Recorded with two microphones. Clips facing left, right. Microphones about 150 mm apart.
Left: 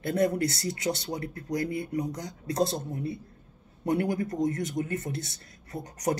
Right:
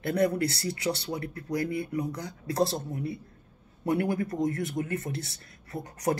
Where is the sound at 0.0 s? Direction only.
25° left (ahead or behind).